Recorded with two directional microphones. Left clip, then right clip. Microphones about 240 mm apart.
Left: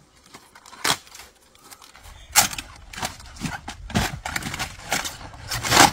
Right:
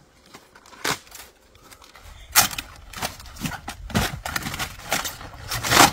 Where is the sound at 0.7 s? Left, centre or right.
Left.